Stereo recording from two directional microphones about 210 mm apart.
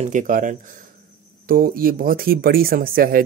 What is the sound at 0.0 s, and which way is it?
Speech, 35° right (ahead or behind).